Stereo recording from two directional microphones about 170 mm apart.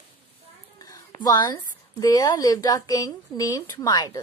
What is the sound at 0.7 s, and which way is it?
A woman's voice, 25° left (ahead or behind).